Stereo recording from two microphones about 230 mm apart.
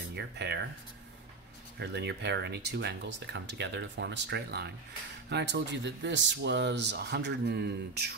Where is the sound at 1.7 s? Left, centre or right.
Right.